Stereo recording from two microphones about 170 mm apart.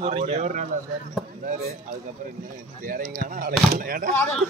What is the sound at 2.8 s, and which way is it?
Speech, 55° right (ahead or behind).